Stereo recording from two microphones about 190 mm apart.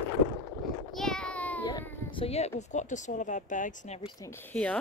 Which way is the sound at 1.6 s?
20° left (ahead or behind).